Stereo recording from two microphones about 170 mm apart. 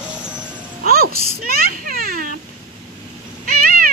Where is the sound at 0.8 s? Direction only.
60° right (ahead or behind).